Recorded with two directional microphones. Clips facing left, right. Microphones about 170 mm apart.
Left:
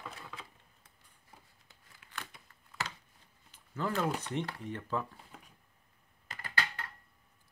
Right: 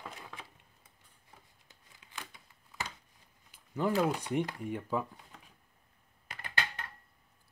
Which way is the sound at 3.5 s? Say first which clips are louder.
Right 4 dB; 15° right (ahead or behind).